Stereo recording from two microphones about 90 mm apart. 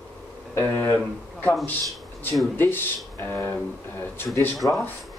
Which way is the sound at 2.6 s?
25° left (ahead or behind).